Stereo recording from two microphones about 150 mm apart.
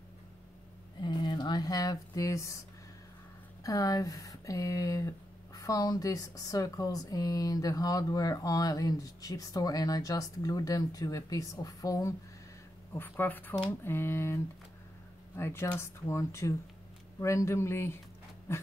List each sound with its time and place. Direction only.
1.0 s speech: 30° left (ahead or behind)
3.6 s speech: 25° left (ahead or behind)